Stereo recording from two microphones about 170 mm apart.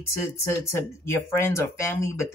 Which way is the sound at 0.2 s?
15° left (ahead or behind).